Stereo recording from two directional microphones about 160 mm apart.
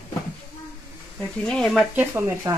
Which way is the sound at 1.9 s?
15° right (ahead or behind).